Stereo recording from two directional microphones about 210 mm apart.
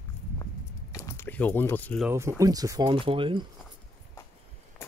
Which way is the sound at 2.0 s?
15° right (ahead or behind).